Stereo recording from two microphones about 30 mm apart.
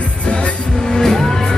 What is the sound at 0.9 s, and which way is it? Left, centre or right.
Music, centre.